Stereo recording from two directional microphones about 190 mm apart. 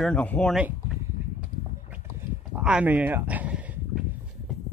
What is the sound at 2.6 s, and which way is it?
Speech, 5° right (ahead or behind).